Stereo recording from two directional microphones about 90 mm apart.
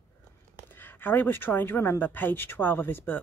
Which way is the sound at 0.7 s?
25° left (ahead or behind).